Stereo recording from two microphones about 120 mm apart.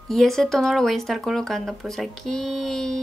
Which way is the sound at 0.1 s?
5° left (ahead or behind).